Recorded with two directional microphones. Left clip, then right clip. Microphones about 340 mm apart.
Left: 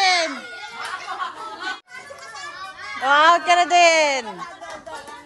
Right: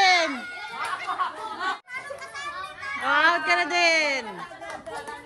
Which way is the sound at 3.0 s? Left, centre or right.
Centre.